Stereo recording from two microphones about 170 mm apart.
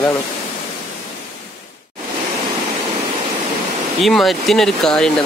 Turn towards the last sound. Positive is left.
turn(degrees=5)  # may be behind; listen again after turning